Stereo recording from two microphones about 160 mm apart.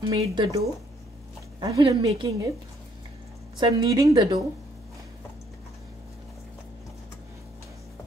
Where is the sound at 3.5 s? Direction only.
25° right (ahead or behind).